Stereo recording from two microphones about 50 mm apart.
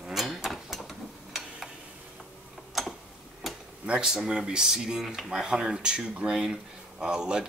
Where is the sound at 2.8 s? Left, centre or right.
Centre.